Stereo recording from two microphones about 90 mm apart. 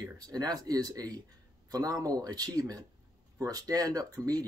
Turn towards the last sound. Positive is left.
turn(degrees=-45)  # may be behind; listen again after turning